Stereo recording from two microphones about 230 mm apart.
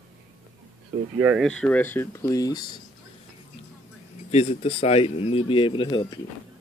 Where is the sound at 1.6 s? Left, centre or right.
Centre.